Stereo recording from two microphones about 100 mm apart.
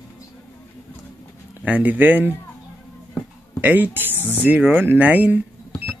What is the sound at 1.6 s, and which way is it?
Speech, 15° right (ahead or behind).